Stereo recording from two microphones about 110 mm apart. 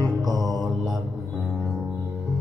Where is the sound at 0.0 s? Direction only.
35° right (ahead or behind).